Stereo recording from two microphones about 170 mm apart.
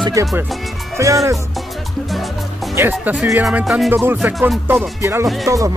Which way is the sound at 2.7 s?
10° right (ahead or behind).